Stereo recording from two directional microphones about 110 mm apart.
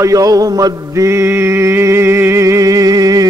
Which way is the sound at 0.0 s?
30° right (ahead or behind).